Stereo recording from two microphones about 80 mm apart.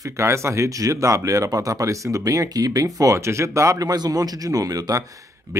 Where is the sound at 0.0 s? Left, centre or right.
Right.